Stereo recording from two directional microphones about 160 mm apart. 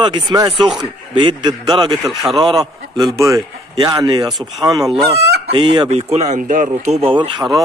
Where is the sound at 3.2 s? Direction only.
20° right (ahead or behind).